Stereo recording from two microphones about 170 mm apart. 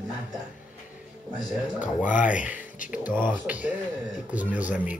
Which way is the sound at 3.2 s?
10° right (ahead or behind).